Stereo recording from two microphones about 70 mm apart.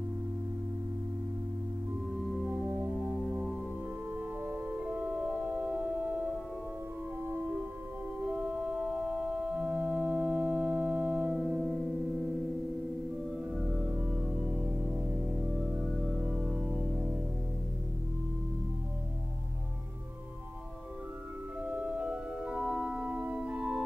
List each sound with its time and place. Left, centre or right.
4.5 s organ: right
7.2 s music: right
8.3 s organ: right
11.3 s music: centre
14.2 s music: centre
16.3 s organ: centre
21.6 s organ: right